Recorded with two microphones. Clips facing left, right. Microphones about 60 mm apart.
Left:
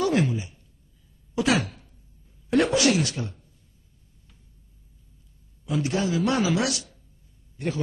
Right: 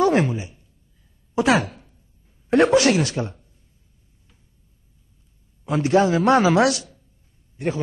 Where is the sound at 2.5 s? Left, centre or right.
Right.